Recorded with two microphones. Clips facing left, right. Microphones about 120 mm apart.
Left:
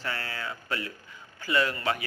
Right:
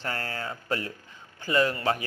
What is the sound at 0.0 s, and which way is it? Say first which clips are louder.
Speech: right 2 dB; 40° right (ahead or behind).